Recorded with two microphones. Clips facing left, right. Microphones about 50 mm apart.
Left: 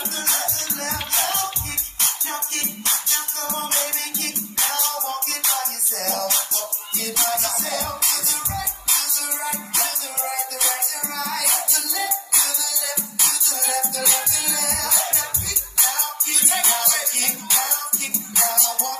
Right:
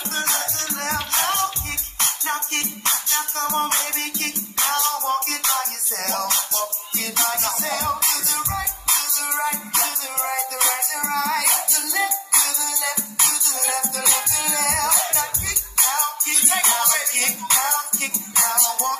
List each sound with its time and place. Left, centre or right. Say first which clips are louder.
0.1 s music: right 5 dB; right